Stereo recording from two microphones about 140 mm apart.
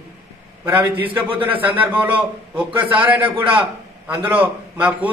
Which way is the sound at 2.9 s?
10° right (ahead or behind).